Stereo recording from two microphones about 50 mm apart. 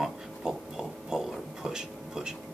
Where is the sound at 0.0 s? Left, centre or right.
Centre.